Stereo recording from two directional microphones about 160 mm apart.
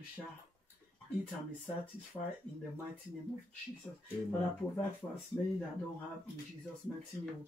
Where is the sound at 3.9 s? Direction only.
10° left (ahead or behind).